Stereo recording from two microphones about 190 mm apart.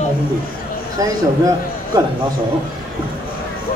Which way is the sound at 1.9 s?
20° right (ahead or behind).